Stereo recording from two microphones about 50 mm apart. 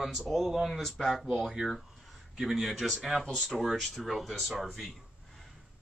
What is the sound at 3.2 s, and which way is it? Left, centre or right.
Speech, centre.